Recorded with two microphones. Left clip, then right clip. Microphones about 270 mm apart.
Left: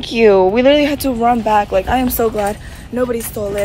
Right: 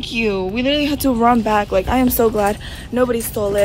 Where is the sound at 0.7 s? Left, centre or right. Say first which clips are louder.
Left 6 dB; centre.